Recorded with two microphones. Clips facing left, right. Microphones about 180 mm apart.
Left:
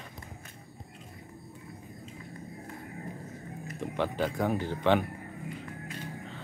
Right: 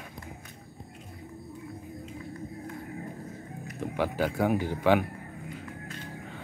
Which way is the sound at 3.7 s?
5° right (ahead or behind).